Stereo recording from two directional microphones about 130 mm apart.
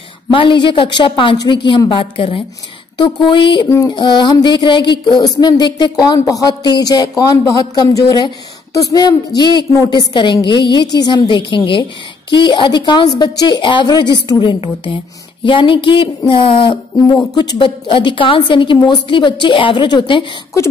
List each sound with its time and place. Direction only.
0.3 s a woman's voice: 40° left (ahead or behind)